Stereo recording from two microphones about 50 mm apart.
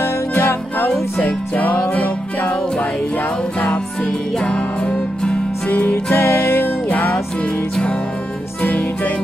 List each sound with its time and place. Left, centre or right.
0.3 s music: left
1.2 s music: left
5.7 s music: left
6.1 s music: left
6.9 s music: left
8.6 s music: left